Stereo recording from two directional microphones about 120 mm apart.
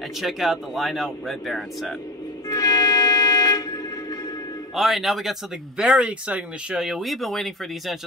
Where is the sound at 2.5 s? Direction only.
30° left (ahead or behind).